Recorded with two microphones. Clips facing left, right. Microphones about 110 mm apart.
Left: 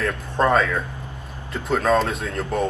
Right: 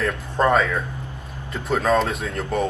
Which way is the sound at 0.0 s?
Centre (ahead or behind).